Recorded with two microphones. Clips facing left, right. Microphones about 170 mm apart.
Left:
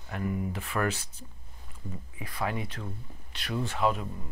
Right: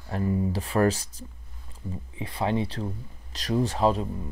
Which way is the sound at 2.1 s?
25° right (ahead or behind).